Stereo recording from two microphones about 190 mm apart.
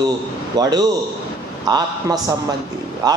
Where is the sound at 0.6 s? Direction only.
20° right (ahead or behind).